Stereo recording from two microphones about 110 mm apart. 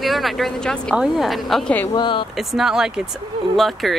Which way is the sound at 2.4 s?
Centre (ahead or behind).